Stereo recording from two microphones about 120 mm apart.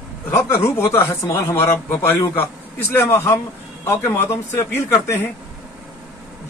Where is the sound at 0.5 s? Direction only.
20° left (ahead or behind).